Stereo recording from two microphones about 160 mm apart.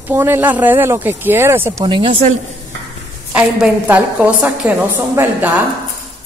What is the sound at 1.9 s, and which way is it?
Speech, 30° right (ahead or behind).